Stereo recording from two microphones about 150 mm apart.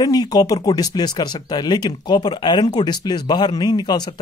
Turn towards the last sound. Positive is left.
turn(degrees=30)  # may be behind; listen again after turning